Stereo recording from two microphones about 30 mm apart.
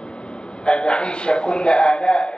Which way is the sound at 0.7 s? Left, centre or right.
Left.